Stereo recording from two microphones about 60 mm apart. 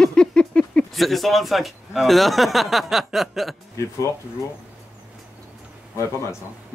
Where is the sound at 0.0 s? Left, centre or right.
Centre.